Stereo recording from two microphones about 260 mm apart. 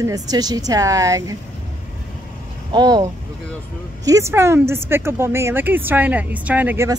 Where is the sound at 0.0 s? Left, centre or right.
Centre.